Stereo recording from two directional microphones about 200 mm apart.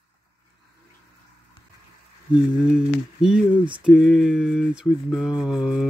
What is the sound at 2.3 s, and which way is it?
Mantra, 5° right (ahead or behind).